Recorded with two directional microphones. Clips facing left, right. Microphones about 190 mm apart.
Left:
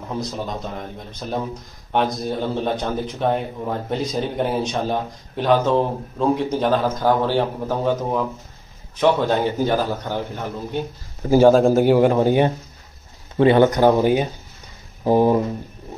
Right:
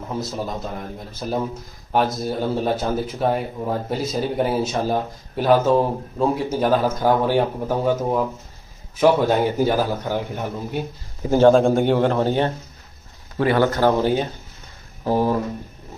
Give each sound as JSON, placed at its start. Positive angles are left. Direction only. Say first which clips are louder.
{"t": 1.2, "sound": "speech", "louder": "right 2 dB", "side_deg": -5}
{"t": 11.2, "sound": "speech", "louder": "left 1 dB", "side_deg": 10}